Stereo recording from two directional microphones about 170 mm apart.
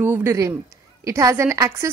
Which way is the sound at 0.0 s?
15° right (ahead or behind).